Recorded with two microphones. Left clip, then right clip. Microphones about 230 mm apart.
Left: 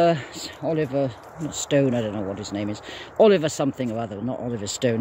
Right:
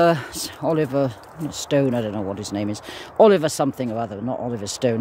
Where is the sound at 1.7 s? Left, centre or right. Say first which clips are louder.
Right 1 dB; centre.